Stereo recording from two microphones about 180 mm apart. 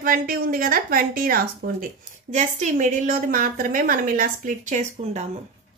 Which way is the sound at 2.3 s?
40° right (ahead or behind).